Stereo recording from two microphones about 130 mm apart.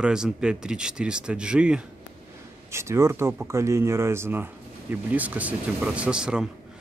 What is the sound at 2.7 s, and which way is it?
Speech, 20° right (ahead or behind).